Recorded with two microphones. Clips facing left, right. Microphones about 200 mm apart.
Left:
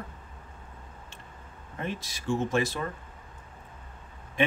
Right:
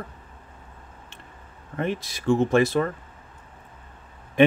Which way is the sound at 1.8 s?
60° right (ahead or behind).